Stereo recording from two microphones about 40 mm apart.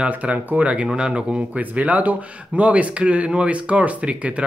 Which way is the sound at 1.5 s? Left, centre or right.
Right.